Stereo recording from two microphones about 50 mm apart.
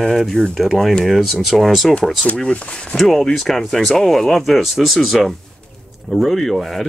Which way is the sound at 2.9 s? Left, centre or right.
Centre.